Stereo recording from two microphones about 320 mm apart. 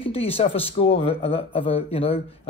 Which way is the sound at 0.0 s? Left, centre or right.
Centre.